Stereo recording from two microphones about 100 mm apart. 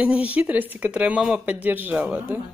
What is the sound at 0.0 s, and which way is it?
Speech, 15° right (ahead or behind).